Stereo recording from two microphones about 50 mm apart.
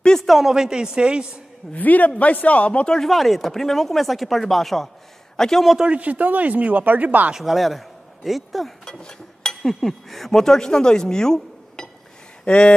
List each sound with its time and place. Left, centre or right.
0.0 s a sound: centre
0.3 s a woman's voice: centre
1.8 s a woman's voice: left
3.0 s a man's voice: centre
5.9 s speech: right
7.3 s speech: centre
8.8 s chink: centre
9.6 s a woman's voice: centre; by 12.7 s left